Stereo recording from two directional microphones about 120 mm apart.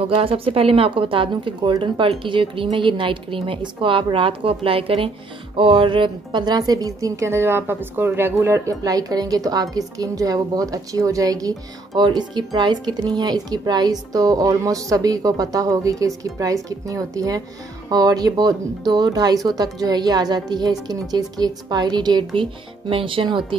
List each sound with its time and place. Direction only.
0.1 s a woman's voice: 50° right (ahead or behind)
22.8 s a woman's voice: 50° right (ahead or behind)